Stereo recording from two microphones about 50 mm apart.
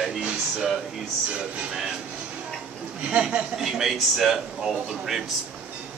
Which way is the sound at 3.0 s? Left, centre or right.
Right.